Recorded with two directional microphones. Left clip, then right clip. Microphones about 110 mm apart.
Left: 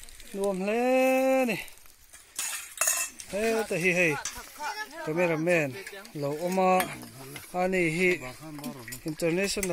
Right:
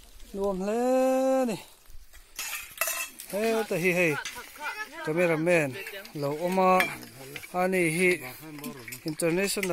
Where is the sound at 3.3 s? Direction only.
20° right (ahead or behind).